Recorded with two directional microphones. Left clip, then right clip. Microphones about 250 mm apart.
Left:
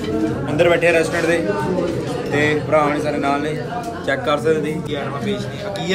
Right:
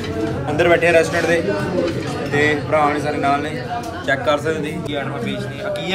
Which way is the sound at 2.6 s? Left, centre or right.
Centre.